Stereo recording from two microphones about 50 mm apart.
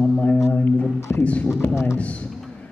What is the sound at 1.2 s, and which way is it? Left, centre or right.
Speech, left.